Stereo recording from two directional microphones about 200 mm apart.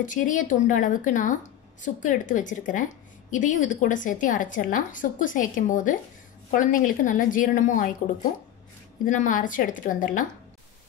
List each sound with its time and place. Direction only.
0.0 s a woman's voice: 40° left (ahead or behind)